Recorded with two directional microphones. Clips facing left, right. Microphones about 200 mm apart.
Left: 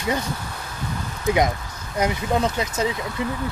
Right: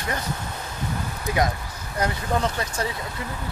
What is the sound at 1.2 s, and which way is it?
Speech, 20° left (ahead or behind).